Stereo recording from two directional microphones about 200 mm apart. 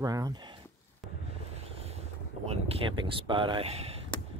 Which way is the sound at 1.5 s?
30° right (ahead or behind).